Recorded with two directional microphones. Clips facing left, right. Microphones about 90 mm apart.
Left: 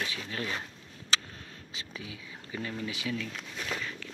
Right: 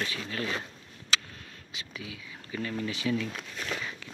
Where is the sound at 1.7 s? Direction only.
30° left (ahead or behind).